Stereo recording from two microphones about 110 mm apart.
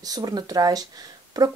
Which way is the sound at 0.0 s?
35° right (ahead or behind).